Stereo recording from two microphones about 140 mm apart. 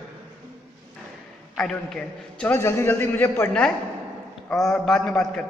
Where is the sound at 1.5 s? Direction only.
5° left (ahead or behind).